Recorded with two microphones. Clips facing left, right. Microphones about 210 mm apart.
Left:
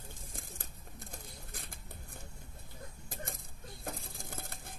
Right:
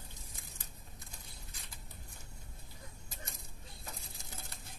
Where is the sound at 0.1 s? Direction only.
50° left (ahead or behind).